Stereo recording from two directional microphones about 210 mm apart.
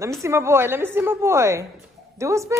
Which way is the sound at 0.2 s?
15° right (ahead or behind).